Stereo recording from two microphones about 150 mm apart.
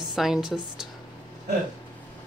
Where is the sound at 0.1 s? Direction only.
5° right (ahead or behind).